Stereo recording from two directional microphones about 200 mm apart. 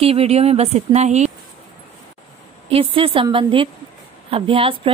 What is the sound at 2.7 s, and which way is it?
A woman's voice, 25° right (ahead or behind).